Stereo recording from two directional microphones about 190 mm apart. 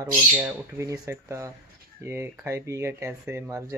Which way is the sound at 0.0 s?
15° right (ahead or behind).